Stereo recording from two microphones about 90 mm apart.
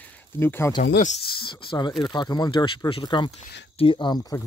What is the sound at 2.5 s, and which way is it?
Speech, 70° left (ahead or behind).